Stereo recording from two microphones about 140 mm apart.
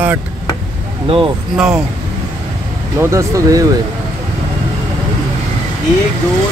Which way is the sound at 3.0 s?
20° right (ahead or behind).